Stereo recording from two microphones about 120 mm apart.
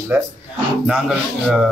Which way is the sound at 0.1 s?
15° right (ahead or behind).